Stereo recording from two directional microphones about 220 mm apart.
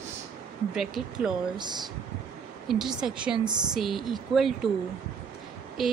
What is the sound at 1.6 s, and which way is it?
Speech, 20° right (ahead or behind).